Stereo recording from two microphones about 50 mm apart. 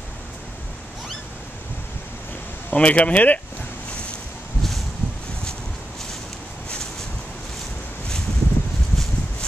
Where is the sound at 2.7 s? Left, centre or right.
Left.